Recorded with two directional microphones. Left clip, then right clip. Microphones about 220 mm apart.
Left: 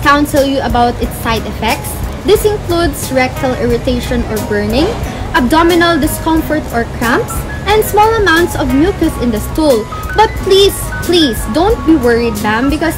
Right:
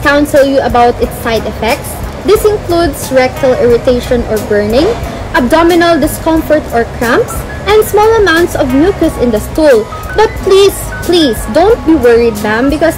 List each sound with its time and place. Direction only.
0.0 s a child's voice: 10° left (ahead or behind)